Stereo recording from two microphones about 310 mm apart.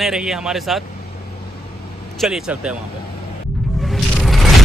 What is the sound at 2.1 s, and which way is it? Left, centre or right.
Speech, centre.